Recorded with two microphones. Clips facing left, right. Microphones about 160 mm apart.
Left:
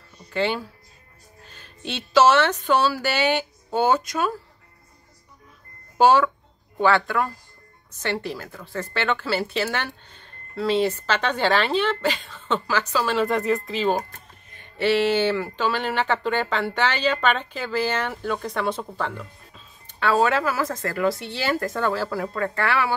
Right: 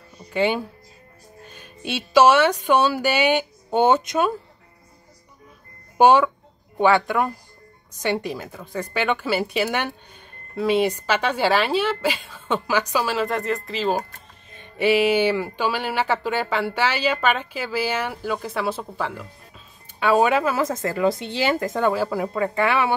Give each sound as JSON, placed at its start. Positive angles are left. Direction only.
{"t": 0.3, "sound": "speech", "side_deg": -15}
{"t": 5.9, "sound": "speech", "side_deg": -15}
{"t": 14.8, "sound": "speech", "side_deg": -10}